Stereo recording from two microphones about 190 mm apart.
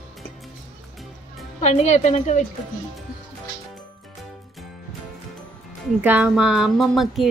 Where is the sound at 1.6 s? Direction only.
35° left (ahead or behind).